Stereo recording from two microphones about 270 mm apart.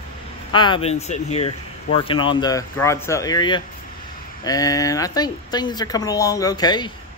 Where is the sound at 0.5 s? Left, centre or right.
Centre.